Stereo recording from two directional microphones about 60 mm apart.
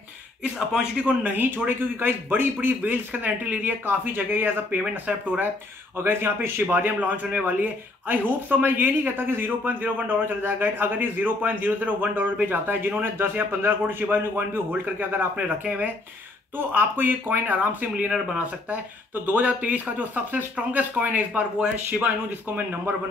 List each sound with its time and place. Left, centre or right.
0.4 s speech: centre
1.2 s a man's voice: right
5.9 s a man's voice: right
19.2 s speech: right